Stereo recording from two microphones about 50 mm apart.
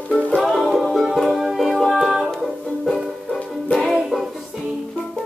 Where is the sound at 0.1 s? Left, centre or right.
Left.